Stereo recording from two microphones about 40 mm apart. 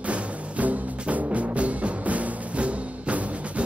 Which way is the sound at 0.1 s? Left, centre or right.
Right.